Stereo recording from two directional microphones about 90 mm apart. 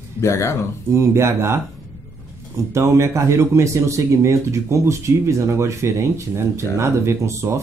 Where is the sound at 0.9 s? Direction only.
30° right (ahead or behind).